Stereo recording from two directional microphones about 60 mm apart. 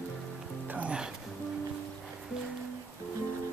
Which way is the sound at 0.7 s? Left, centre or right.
Right.